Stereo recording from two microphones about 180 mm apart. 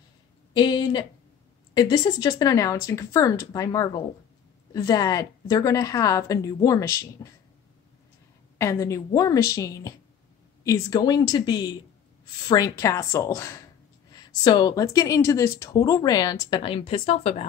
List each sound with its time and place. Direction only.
0.6 s speech: 25° left (ahead or behind)
8.5 s a woman's voice: 15° left (ahead or behind); by 17.5 s 35° left (ahead or behind)